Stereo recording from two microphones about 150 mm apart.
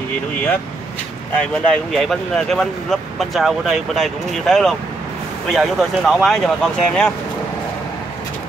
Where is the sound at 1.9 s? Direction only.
Centre (ahead or behind).